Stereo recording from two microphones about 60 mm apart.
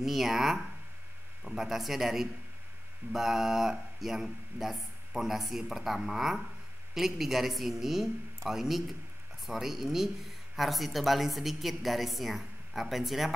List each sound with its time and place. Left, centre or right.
0.0 s speech: centre